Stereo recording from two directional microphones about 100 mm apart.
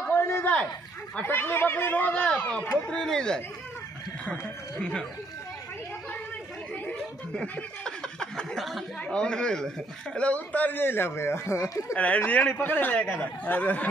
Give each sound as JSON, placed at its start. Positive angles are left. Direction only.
{"t": 0.1, "sound": "a sound", "side_deg": 25}
{"t": 1.2, "sound": "speech", "side_deg": 20}
{"t": 6.9, "sound": "speech", "side_deg": 10}
{"t": 12.3, "sound": "speech", "side_deg": 15}